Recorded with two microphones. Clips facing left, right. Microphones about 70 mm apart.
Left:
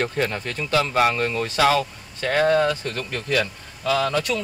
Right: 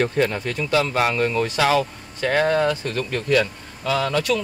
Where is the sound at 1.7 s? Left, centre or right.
Right.